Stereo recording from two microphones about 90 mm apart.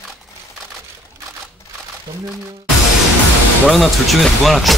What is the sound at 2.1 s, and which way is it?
Speech, 40° right (ahead or behind).